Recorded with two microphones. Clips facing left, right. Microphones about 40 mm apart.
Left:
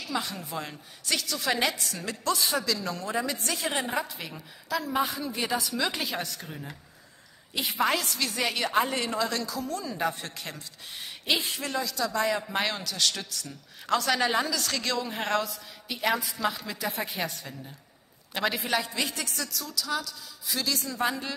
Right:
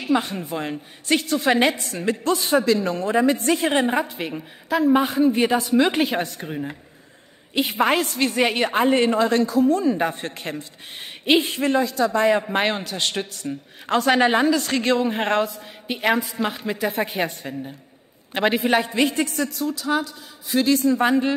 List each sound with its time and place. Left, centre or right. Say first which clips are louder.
0.0 s a woman's voice: right 10 dB; right